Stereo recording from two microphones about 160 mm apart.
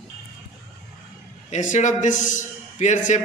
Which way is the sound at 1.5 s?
50° left (ahead or behind).